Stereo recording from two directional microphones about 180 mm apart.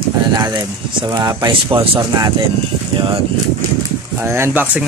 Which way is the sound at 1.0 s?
20° right (ahead or behind).